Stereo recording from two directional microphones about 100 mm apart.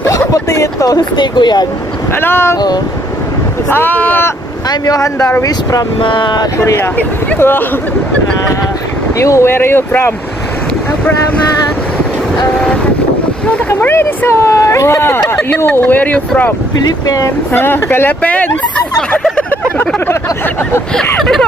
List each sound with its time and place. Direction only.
0.0 s a sound: 30° left (ahead or behind)
2.1 s speech: 25° left (ahead or behind)
3.7 s speech: 20° left (ahead or behind)
4.6 s speech: 35° left (ahead or behind)
5.9 s speech: 55° left (ahead or behind)
6.6 s speech: 30° left (ahead or behind)
7.0 s speech: 20° left (ahead or behind)
9.2 s speech: 30° left (ahead or behind)
13.7 s speech: 20° left (ahead or behind)
17.0 s speech: 35° left (ahead or behind)
17.5 s speech: 25° left (ahead or behind)
21.2 s speech: 5° left (ahead or behind)